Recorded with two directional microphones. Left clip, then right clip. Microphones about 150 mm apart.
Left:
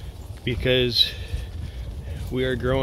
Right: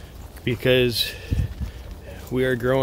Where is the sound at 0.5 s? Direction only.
35° right (ahead or behind).